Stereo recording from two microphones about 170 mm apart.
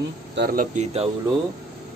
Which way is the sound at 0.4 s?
55° right (ahead or behind).